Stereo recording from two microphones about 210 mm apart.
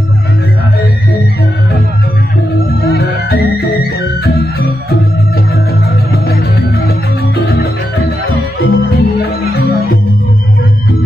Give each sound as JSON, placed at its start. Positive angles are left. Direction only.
{"t": 2.9, "sound": "music", "side_deg": 45}
{"t": 8.3, "sound": "music", "side_deg": 45}